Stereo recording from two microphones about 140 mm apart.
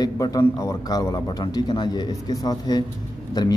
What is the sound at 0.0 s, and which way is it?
A man's voice, 25° left (ahead or behind).